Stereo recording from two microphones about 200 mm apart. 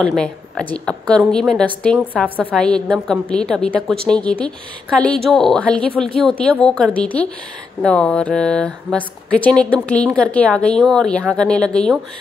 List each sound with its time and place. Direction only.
0.0 s speech: 5° left (ahead or behind)
2.2 s a woman's voice: 10° right (ahead or behind)
2.5 s speech: 5° left (ahead or behind)